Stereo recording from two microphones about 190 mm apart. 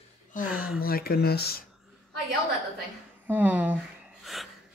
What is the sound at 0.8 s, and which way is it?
Speech, 50° left (ahead or behind).